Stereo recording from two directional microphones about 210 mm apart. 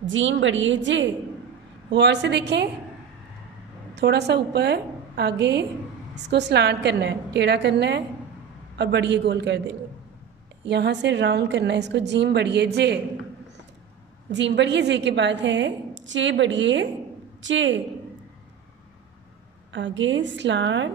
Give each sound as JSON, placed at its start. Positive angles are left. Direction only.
{"t": 0.0, "sound": "a woman's voice", "side_deg": -65}
{"t": 3.9, "sound": "a woman's voice", "side_deg": -55}
{"t": 14.3, "sound": "a woman's voice", "side_deg": -55}
{"t": 19.7, "sound": "a woman's voice", "side_deg": -60}